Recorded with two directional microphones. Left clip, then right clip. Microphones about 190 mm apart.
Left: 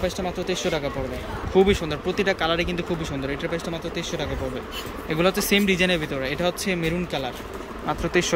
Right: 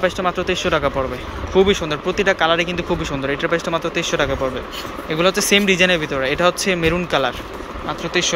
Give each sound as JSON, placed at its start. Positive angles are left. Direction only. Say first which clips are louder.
{"t": 0.0, "sound": "speech", "louder": "right 8 dB", "side_deg": 5}
{"t": 8.0, "sound": "speech", "louder": "right 4 dB", "side_deg": 20}